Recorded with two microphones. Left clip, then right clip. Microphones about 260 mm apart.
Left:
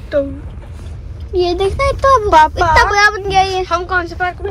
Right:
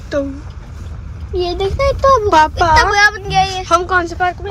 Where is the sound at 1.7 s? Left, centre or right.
Left.